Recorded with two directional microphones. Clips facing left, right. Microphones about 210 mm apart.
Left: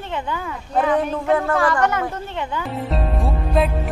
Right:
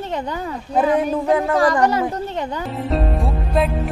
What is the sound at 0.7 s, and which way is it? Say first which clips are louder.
Speech: right 2 dB; 10° right (ahead or behind).